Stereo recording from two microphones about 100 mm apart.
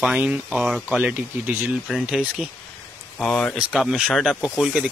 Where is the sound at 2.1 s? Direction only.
5° right (ahead or behind).